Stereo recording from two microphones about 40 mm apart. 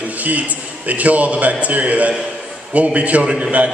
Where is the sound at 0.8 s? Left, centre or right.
Right.